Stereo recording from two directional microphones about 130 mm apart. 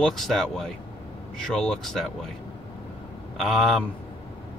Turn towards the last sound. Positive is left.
turn(degrees=0)  # may be behind; listen again after turning